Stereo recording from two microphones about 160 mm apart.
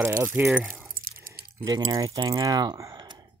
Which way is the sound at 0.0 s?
15° right (ahead or behind).